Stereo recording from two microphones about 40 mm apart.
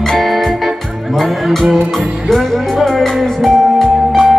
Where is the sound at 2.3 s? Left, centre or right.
Centre.